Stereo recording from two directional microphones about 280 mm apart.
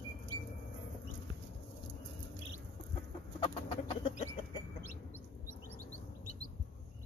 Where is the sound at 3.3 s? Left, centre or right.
Centre.